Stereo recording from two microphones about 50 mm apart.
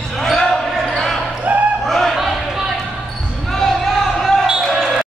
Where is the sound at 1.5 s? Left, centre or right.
Right.